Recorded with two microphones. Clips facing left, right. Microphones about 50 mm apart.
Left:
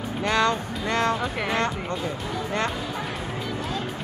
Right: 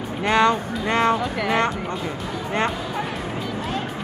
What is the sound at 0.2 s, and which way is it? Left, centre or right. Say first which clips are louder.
Speech: right 5 dB; right.